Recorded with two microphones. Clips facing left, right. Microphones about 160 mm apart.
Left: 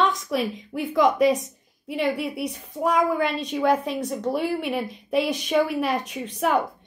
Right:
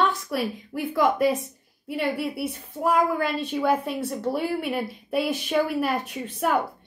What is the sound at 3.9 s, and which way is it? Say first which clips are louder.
Speech: left 1 dB; 20° left (ahead or behind).